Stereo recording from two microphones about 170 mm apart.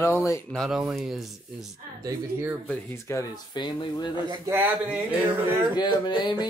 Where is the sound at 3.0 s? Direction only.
20° left (ahead or behind).